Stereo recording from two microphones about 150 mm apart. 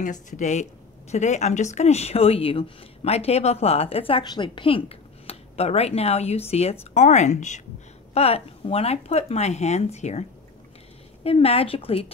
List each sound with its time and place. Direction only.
0.0 s speech: 55° left (ahead or behind)
11.2 s speech: 40° left (ahead or behind)